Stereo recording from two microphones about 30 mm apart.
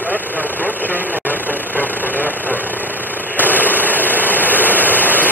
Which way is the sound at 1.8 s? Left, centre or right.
Right.